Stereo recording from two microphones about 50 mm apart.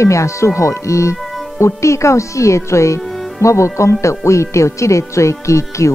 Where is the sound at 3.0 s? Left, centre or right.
Centre.